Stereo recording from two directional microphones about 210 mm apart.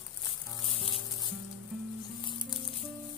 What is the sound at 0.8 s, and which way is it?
Music, 25° left (ahead or behind).